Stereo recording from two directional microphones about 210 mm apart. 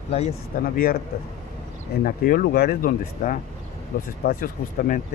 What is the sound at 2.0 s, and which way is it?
Speech, 45° left (ahead or behind).